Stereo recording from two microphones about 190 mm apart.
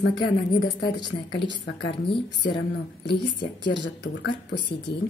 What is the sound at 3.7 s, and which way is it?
Speech, 65° left (ahead or behind).